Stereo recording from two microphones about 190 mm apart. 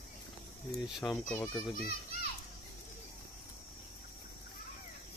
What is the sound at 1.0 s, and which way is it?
Speech, 5° left (ahead or behind).